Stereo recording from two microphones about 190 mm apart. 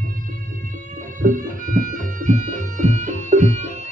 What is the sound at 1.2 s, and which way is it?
Music, 45° right (ahead or behind).